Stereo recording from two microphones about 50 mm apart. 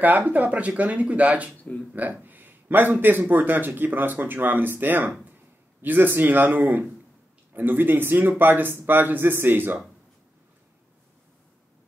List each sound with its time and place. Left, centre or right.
0.0 s speech: right
1.6 s speech: left
2.2 s a man's voice: right